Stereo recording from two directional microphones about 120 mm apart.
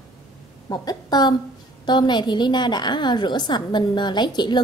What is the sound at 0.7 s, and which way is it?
A woman's voice, 35° left (ahead or behind).